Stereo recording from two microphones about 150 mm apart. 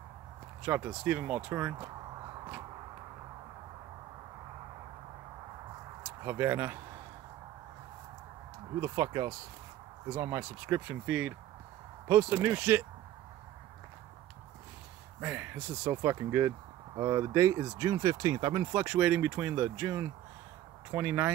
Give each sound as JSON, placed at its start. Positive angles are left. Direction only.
{"t": 0.7, "sound": "speech", "side_deg": -15}
{"t": 6.2, "sound": "speech", "side_deg": -20}
{"t": 8.8, "sound": "speech", "side_deg": -25}
{"t": 10.9, "sound": "speech", "side_deg": -10}
{"t": 15.1, "sound": "speech", "side_deg": -15}
{"t": 18.8, "sound": "speech", "side_deg": -10}